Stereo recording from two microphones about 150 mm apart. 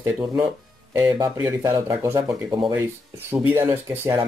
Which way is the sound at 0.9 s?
25° right (ahead or behind).